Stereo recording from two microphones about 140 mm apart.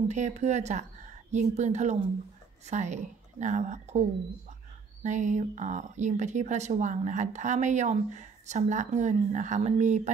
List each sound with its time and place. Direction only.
0.1 s speech: 55° right (ahead or behind)
5.0 s speech: 60° right (ahead or behind)